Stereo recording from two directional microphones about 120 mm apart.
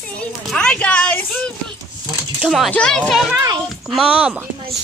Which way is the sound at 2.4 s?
Centre (ahead or behind).